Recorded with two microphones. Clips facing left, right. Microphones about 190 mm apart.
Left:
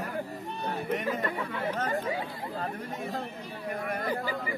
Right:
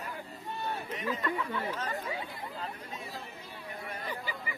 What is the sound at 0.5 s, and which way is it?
Chatter, 15° left (ahead or behind).